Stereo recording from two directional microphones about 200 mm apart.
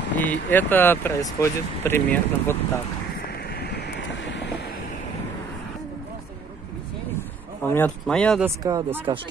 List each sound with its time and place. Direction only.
0.1 s speech: 10° left (ahead or behind)
3.5 s vehicle: 60° left (ahead or behind)
7.2 s speech: 10° left (ahead or behind)
8.5 s speech: 15° right (ahead or behind)